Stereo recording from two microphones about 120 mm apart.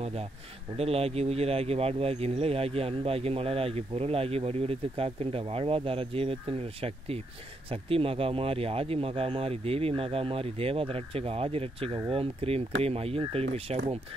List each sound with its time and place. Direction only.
0.0 s speech: 60° right (ahead or behind)
7.7 s speech: 50° right (ahead or behind)